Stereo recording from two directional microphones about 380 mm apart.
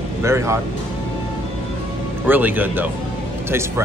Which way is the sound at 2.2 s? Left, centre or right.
Centre.